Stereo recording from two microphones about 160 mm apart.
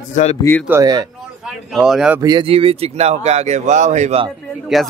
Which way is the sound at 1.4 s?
5° right (ahead or behind).